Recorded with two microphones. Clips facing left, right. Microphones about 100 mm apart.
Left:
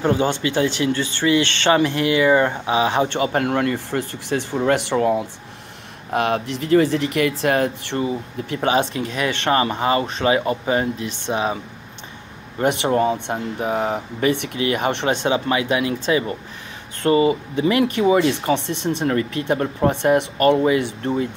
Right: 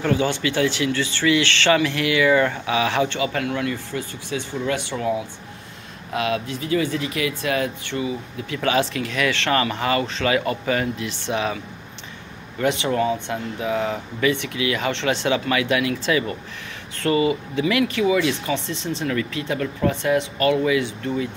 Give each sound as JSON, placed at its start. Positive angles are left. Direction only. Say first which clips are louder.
{"t": 0.0, "sound": "speech", "louder": "left 2 dB", "side_deg": 30}
{"t": 3.3, "sound": "speech", "louder": "left 5 dB", "side_deg": 50}
{"t": 8.5, "sound": "speech", "louder": "left 2 dB", "side_deg": 30}
{"t": 12.8, "sound": "speech", "louder": "left 3 dB", "side_deg": 35}
{"t": 15.2, "sound": "speech", "louder": "left 1 dB", "side_deg": 25}
{"t": 18.7, "sound": "speech", "louder": "left 4 dB", "side_deg": 65}
{"t": 19.0, "sound": "speech", "louder": "left 4 dB", "side_deg": 40}